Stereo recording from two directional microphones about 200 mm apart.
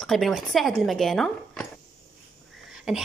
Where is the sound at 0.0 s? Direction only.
Centre (ahead or behind).